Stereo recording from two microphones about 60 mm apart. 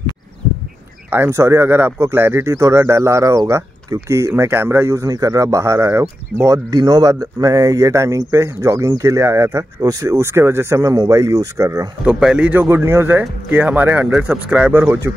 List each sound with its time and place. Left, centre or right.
1.3 s speech: right
3.9 s speech: right
4.4 s speech: right
7.9 s speech: right
11.0 s speech: right
12.6 s speech: right
14.0 s speech: centre
14.7 s speech: right